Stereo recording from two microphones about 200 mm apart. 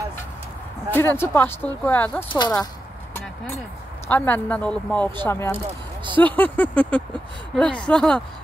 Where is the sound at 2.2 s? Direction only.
20° left (ahead or behind).